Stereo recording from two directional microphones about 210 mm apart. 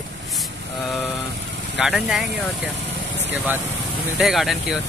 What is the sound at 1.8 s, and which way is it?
Speech, centre (ahead or behind).